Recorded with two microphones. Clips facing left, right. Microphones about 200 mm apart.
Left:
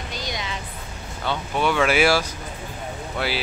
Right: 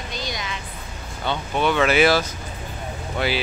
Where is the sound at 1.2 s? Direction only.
5° left (ahead or behind).